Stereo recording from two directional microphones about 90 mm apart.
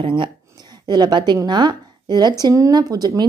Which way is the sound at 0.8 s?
55° right (ahead or behind).